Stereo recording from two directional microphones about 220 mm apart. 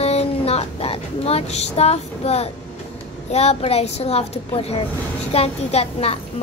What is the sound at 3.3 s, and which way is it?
A child's voice, 30° left (ahead or behind).